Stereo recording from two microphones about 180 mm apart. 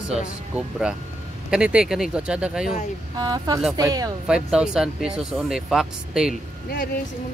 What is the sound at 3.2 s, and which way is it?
Speech, 20° right (ahead or behind).